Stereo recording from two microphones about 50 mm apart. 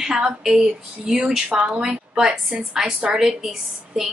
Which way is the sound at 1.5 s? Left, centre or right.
Centre.